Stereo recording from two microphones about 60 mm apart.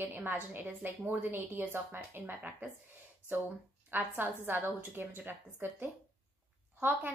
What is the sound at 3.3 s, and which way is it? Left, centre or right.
A woman's voice, right.